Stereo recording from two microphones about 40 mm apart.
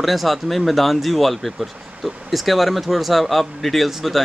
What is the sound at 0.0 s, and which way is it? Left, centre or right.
Speech, centre.